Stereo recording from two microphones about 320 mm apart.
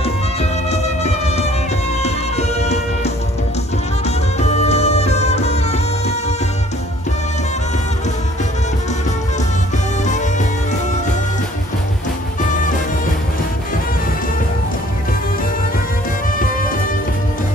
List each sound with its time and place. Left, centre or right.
0.4 s music: centre
4.4 s music: left